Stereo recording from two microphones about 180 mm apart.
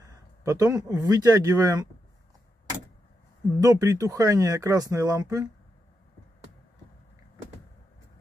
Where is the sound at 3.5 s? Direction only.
15° right (ahead or behind).